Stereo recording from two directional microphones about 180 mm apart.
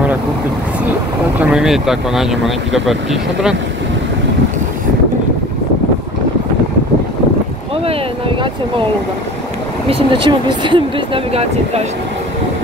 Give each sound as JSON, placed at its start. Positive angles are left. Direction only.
{"t": 1.4, "sound": "speech", "side_deg": -5}
{"t": 7.7, "sound": "boat", "side_deg": -30}
{"t": 9.8, "sound": "speech", "side_deg": -30}